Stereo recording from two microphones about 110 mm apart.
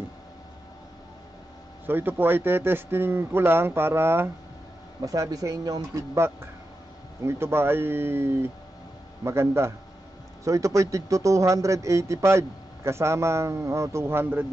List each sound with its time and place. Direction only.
1.9 s a man's voice: 20° right (ahead or behind)
5.0 s a man's voice: 30° right (ahead or behind)